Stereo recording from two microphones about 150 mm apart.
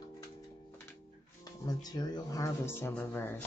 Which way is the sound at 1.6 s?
25° left (ahead or behind).